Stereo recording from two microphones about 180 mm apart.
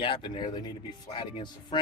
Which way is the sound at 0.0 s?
25° left (ahead or behind).